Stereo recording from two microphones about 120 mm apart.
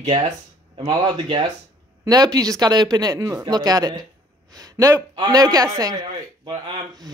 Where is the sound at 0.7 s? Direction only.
40° right (ahead or behind).